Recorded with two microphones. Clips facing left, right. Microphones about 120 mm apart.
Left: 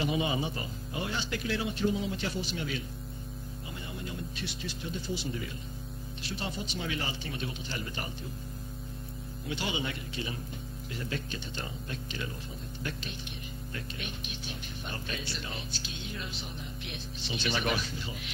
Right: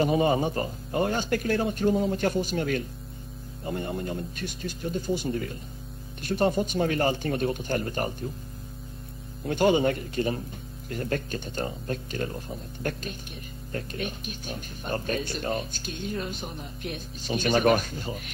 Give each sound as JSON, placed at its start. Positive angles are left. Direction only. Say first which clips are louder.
{"t": 0.0, "sound": "speech", "louder": "right 8 dB", "side_deg": -45}
{"t": 9.5, "sound": "speech", "louder": "right 13 dB", "side_deg": -50}
{"t": 13.7, "sound": "speech", "louder": "right 10 dB", "side_deg": -45}